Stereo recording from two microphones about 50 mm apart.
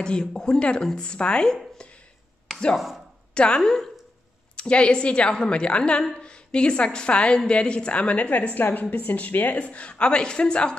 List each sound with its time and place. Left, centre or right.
0.0 s a woman's voice: centre
1.8 s a sound: left
2.5 s chopping: centre
3.3 s a woman's voice: centre